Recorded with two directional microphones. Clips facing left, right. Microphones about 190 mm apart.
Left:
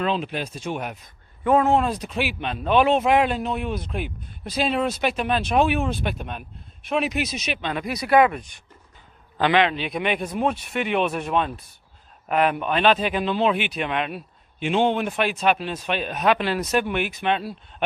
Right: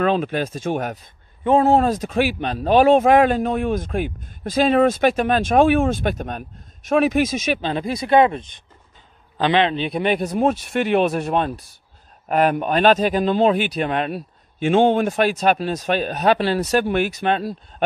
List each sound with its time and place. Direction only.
0.1 s speech: 50° right (ahead or behind)
1.4 s speech: 25° right (ahead or behind)
1.7 s speech: 40° right (ahead or behind)
7.6 s a man's voice: 30° right (ahead or behind)